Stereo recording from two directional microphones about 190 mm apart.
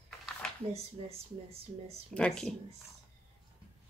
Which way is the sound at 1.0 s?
30° right (ahead or behind).